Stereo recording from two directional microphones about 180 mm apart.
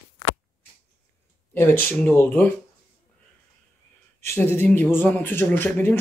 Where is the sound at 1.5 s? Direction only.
10° left (ahead or behind).